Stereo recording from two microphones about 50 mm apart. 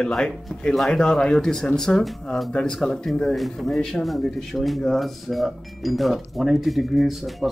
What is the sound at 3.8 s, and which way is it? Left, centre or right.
Speech, centre.